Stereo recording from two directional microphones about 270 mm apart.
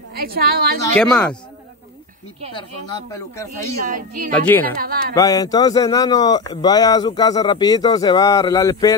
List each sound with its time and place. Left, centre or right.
0.1 s a woman's voice: right
0.9 s speech: centre
2.5 s a man's voice: centre
3.8 s speech: right
4.3 s a man's voice: centre
4.6 s speech: right
5.1 s a man's voice: centre